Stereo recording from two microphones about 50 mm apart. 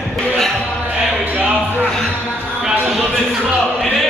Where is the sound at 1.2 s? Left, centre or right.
Right.